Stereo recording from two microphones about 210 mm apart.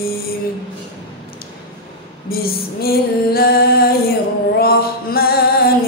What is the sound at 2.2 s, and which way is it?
Female singing, 45° left (ahead or behind).